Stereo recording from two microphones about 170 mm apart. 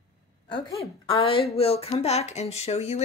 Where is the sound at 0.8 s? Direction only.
35° left (ahead or behind).